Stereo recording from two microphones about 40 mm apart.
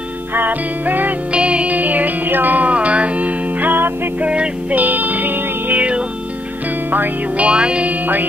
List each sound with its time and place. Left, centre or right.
0.3 s music: right
1.3 s music: right
1.7 s music: right
2.7 s music: right
3.7 s music: right
4.2 s music: right
4.7 s music: right
5.8 s music: right
7.3 s music: right